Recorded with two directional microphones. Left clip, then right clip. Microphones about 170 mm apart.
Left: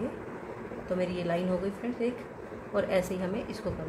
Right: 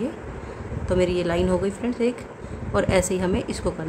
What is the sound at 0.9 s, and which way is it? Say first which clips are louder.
A woman's voice: right 9 dB; 35° right (ahead or behind).